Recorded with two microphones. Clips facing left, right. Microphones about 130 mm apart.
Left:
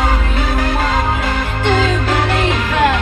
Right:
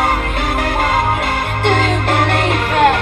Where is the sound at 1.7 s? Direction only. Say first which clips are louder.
Even; 55° right (ahead or behind).